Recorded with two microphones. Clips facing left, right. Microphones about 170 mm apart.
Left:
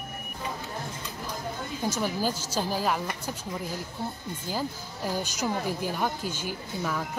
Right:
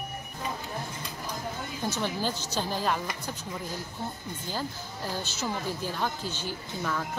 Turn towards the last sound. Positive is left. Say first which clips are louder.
# left 1 dB
turn(degrees=10)  # may be behind; listen again after turning